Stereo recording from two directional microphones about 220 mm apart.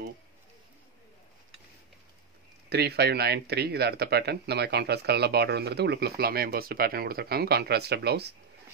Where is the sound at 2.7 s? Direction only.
50° right (ahead or behind).